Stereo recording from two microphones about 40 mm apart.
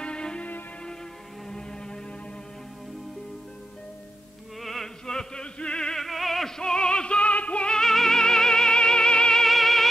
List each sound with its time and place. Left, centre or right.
0.0 s music: left
4.6 s music: centre
5.0 s music: centre
5.9 s music: centre
6.6 s synthetic singing: left
7.6 s music: centre
9.4 s music: centre